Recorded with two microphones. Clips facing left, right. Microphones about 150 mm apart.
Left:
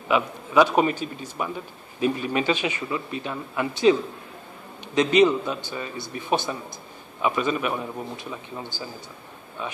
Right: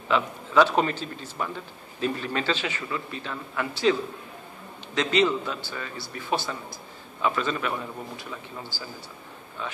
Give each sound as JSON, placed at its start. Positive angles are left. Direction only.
{"t": 0.1, "sound": "a man's voice", "side_deg": 15}
{"t": 4.9, "sound": "a man's voice", "side_deg": 15}